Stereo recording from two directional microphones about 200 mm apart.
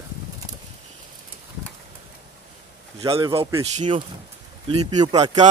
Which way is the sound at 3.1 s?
25° right (ahead or behind).